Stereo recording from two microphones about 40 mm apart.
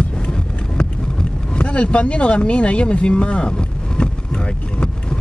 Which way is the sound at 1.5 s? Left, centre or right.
Left.